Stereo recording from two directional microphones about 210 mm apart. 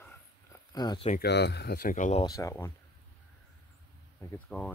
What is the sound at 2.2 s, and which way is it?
Speech, 15° left (ahead or behind).